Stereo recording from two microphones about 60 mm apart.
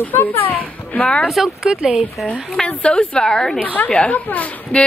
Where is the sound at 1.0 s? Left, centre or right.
Centre.